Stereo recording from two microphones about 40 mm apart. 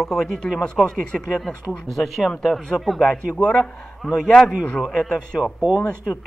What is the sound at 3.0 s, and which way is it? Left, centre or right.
Speech, left.